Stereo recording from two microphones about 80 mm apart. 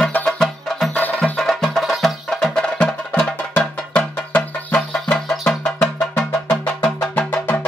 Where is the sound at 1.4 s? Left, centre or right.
Centre.